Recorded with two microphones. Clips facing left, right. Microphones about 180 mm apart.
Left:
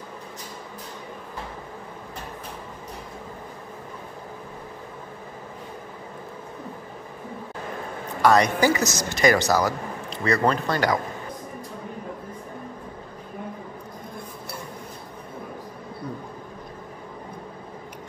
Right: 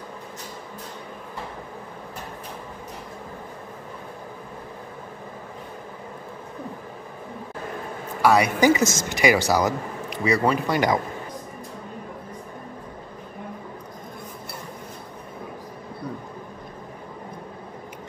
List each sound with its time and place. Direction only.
8.2 s speech: 10° right (ahead or behind)
9.1 s speech: 10° right (ahead or behind)